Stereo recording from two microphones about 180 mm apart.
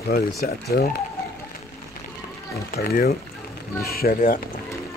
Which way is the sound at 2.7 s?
55° left (ahead or behind).